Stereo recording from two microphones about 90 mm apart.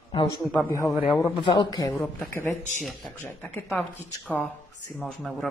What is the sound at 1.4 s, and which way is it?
Speech, 60° left (ahead or behind).